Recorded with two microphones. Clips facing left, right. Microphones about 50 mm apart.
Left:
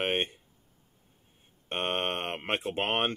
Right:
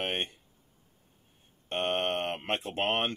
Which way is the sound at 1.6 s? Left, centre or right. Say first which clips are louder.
Right 1 dB; left.